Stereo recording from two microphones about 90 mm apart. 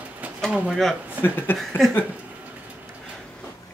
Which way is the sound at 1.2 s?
20° left (ahead or behind).